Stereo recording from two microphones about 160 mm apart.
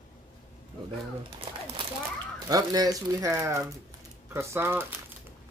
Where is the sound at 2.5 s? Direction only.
25° right (ahead or behind).